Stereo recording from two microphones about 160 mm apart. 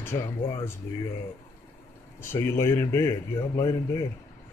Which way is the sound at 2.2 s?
15° left (ahead or behind).